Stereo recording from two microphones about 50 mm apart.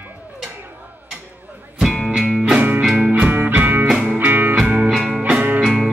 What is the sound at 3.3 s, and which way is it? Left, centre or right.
Music, right.